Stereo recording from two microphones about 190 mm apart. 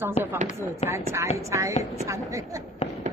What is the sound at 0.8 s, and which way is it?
Speech, 35° left (ahead or behind).